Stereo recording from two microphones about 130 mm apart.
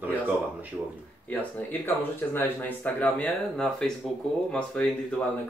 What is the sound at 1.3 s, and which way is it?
Speech, 15° left (ahead or behind).